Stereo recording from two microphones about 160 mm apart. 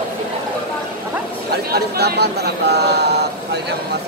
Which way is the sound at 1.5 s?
80° right.